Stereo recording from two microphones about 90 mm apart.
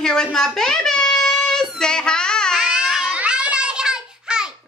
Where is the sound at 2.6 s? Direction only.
5° right (ahead or behind).